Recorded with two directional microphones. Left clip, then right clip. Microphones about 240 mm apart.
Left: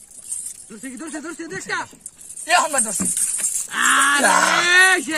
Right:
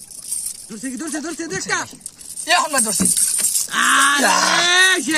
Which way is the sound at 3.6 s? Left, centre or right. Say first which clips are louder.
Right 2 dB; right.